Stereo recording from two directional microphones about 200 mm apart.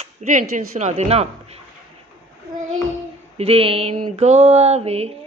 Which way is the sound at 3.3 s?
30° right (ahead or behind).